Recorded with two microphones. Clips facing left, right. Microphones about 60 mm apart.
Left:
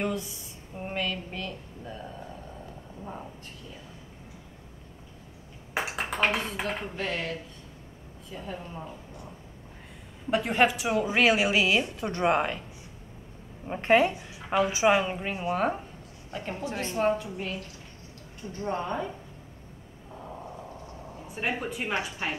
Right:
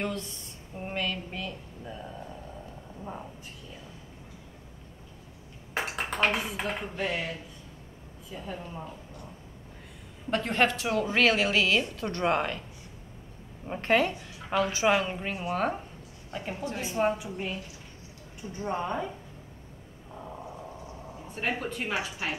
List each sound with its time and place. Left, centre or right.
0.0 s a woman's voice: centre
5.8 s a woman's voice: centre
10.3 s a woman's voice: centre
13.7 s a woman's voice: left
15.5 s a woman's voice: centre
21.3 s a woman's voice: centre